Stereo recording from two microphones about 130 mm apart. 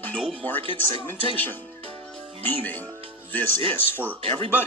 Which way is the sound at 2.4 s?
15° left (ahead or behind).